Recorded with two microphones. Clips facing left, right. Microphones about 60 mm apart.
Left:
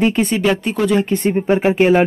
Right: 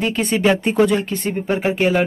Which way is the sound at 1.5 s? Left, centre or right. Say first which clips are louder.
Left 5 dB; centre.